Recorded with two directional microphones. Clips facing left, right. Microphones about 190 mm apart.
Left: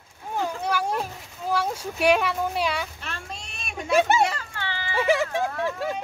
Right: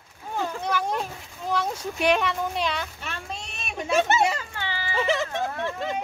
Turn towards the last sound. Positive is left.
turn(degrees=10)  # may be behind; listen again after turning